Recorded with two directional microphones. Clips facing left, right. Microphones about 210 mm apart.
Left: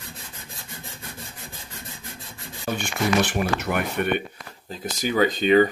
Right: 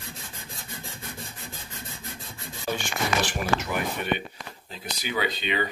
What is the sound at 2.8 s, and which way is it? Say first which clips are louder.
Speech: left 7 dB; 60° left (ahead or behind).